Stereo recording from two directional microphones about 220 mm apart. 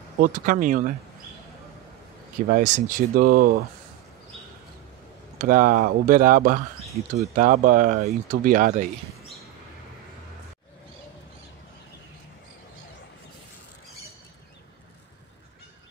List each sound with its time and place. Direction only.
0.2 s speech: 40° right (ahead or behind)
2.5 s speech: 35° right (ahead or behind)
5.4 s speech: 40° right (ahead or behind)